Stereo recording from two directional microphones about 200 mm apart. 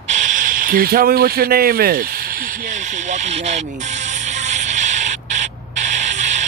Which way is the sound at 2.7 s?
35° right (ahead or behind).